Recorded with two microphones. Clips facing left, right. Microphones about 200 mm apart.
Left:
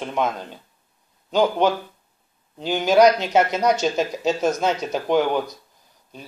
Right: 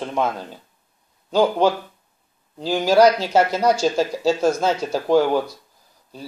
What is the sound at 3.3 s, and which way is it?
Speech, 5° right (ahead or behind).